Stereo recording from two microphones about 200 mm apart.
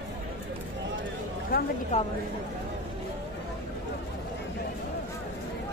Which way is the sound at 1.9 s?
30° left (ahead or behind).